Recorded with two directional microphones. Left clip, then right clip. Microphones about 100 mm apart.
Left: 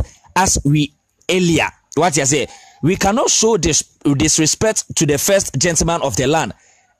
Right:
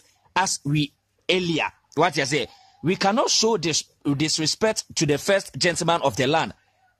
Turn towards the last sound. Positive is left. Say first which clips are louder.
# left 5 dB
turn(degrees=60)  # may be behind; listen again after turning